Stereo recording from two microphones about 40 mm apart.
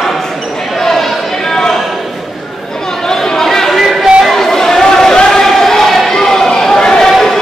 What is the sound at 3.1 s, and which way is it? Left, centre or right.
Chatter, centre.